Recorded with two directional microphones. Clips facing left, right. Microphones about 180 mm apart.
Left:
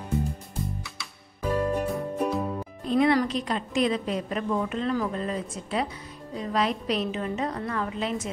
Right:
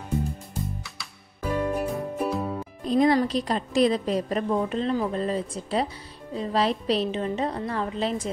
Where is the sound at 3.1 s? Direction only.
35° right (ahead or behind).